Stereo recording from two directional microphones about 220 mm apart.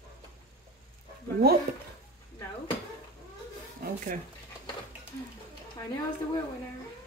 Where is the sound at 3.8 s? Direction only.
40° right (ahead or behind).